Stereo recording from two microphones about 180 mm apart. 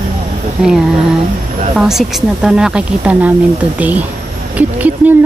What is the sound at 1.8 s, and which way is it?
A woman's voice, centre (ahead or behind).